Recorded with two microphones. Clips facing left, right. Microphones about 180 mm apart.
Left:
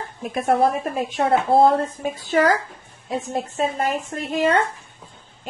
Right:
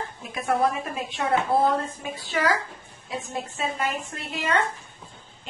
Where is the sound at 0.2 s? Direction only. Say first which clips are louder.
Left 5 dB; 50° left (ahead or behind).